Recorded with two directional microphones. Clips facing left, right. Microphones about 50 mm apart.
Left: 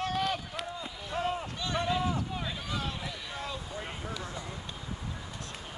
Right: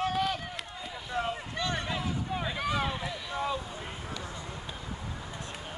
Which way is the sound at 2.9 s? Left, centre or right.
Centre.